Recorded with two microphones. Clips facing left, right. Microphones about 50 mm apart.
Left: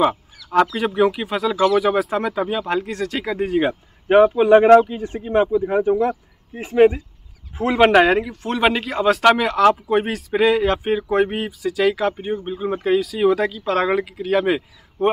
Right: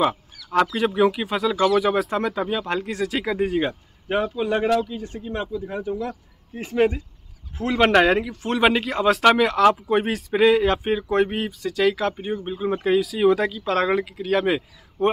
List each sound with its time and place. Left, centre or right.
0.7 s speech: centre
4.1 s speech: left
6.5 s speech: centre
7.8 s speech: centre